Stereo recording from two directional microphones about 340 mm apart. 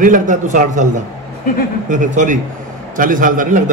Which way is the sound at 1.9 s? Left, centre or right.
Right.